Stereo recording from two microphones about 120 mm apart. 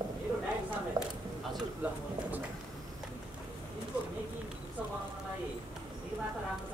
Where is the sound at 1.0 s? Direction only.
30° right (ahead or behind).